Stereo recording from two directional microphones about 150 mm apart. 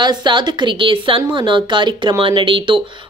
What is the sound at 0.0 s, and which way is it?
A woman's voice, 30° right (ahead or behind).